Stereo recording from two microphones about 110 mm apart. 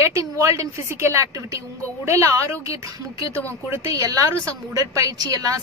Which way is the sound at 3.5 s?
30° right (ahead or behind).